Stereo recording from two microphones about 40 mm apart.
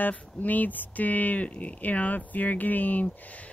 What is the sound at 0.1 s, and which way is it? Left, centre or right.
Speech, left.